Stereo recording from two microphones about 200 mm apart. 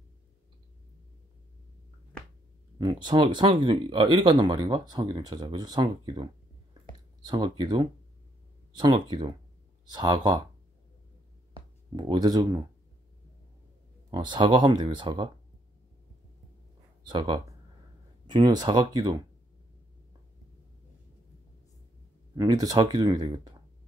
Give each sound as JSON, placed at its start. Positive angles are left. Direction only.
{"t": 2.8, "sound": "speech", "side_deg": -20}
{"t": 7.2, "sound": "speech", "side_deg": -20}
{"t": 11.9, "sound": "speech", "side_deg": -25}
{"t": 14.1, "sound": "speech", "side_deg": -25}
{"t": 17.0, "sound": "speech", "side_deg": -20}
{"t": 22.3, "sound": "speech", "side_deg": -20}